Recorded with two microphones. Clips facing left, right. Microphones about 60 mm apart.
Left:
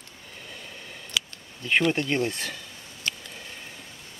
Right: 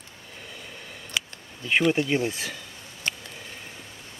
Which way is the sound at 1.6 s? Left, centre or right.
Centre.